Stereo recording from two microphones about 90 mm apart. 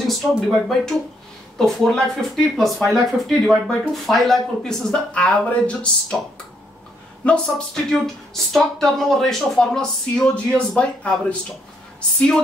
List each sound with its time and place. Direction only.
0.0 s speech: centre (ahead or behind)
7.2 s speech: 10° left (ahead or behind)